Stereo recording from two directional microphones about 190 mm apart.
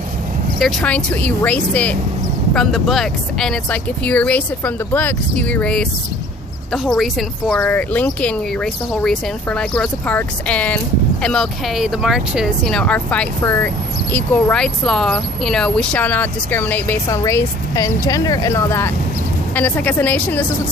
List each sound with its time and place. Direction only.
0.6 s speech: centre (ahead or behind)